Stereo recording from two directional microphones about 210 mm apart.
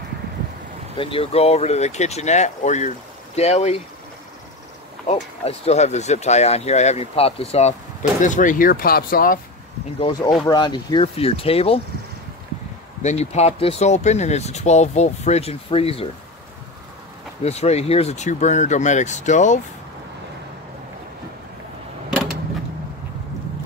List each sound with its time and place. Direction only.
0.9 s speech: 25° left (ahead or behind)
5.0 s speech: 30° left (ahead or behind)
9.9 s speech: 20° left (ahead or behind)
13.0 s speech: 30° left (ahead or behind)
17.4 s speech: 30° left (ahead or behind)